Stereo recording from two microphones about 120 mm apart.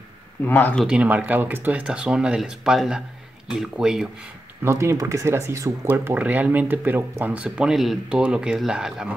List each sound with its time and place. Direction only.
0.5 s speech: 15° left (ahead or behind)
0.8 s speech: 10° right (ahead or behind)
4.6 s speech: 25° right (ahead or behind); by 9.1 s 5° right (ahead or behind)